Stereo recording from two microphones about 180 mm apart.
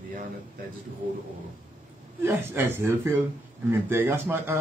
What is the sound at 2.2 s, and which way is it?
Speech, 10° right (ahead or behind).